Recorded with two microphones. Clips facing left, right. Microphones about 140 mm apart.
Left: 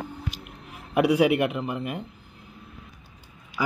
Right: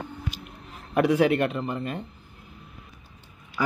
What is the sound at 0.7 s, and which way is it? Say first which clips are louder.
A man's voice: left 1 dB; 10° left (ahead or behind).